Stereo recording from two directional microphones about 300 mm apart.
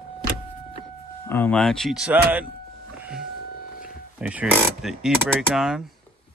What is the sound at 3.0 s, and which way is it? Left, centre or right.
Music, centre.